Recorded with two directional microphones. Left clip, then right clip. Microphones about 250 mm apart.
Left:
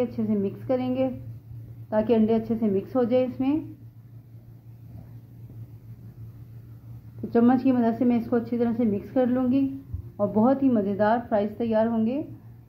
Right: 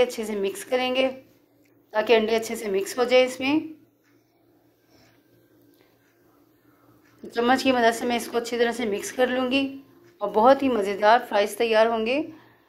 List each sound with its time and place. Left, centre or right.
0.0 s a woman's voice: centre
7.2 s a woman's voice: centre